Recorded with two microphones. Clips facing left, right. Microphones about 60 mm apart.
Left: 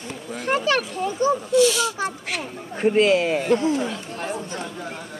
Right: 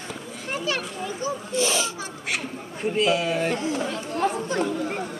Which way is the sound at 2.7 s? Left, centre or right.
Left.